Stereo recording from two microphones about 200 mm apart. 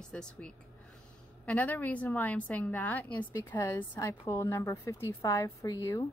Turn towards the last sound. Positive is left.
turn(degrees=15)  # may be behind; listen again after turning